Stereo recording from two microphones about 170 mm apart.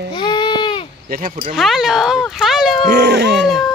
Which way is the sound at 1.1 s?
55° right (ahead or behind).